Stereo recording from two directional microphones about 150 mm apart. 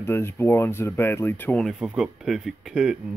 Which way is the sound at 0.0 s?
15° left (ahead or behind).